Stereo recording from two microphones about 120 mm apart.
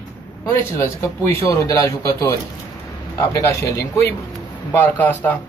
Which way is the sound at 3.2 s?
25° left (ahead or behind).